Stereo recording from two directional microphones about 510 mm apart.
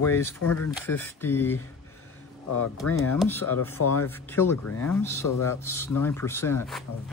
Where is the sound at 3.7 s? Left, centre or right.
Left.